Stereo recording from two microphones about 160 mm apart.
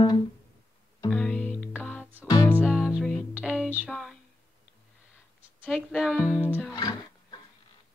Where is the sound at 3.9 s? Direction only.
Centre (ahead or behind).